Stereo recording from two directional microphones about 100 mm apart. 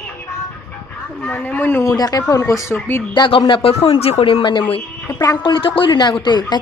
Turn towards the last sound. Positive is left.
turn(degrees=50)  # may be behind; listen again after turning